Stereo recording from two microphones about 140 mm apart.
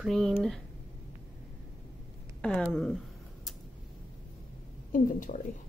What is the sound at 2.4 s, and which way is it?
Speech, 10° left (ahead or behind).